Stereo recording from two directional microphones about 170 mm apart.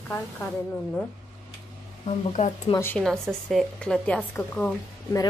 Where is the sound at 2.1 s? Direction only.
40° left (ahead or behind).